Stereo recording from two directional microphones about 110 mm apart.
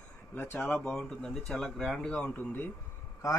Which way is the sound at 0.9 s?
5° left (ahead or behind).